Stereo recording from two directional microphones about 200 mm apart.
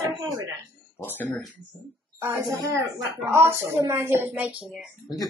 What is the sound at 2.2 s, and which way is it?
Speech, 15° right (ahead or behind).